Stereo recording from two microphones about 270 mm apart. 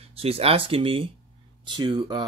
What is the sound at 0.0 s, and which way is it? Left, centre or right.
Speech, right.